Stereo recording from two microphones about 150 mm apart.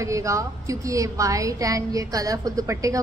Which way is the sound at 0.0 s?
20° right (ahead or behind).